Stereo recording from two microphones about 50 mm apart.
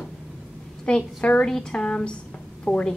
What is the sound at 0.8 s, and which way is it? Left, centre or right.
A woman's voice, left.